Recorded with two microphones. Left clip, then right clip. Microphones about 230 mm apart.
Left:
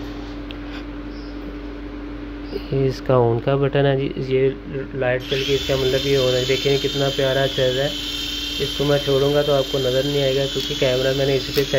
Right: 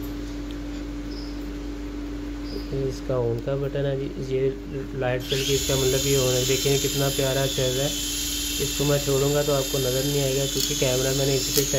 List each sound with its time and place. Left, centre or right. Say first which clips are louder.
2.9 s speech: left 9 dB; left; by 11.6 s centre